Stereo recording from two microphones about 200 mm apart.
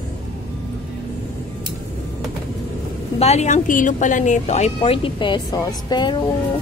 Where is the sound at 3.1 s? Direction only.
35° left (ahead or behind).